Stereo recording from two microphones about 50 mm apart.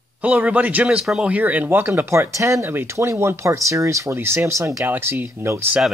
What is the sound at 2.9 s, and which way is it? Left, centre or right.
Speech, right.